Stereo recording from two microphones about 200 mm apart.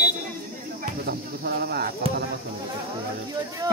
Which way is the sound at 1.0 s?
50° right (ahead or behind).